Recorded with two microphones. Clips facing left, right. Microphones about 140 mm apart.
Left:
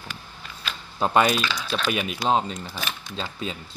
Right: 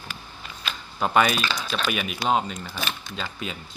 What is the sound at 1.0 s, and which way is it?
Speech, 25° left (ahead or behind).